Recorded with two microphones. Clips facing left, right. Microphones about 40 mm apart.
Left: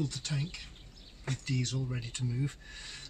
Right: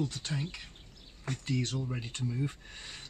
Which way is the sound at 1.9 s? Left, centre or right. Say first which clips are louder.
Right 1 dB; centre.